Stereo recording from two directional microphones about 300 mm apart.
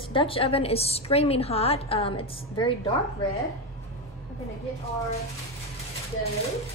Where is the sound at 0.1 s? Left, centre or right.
Centre.